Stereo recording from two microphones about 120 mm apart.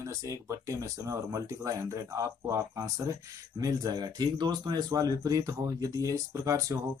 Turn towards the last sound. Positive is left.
turn(degrees=-30)  # may be behind; listen again after turning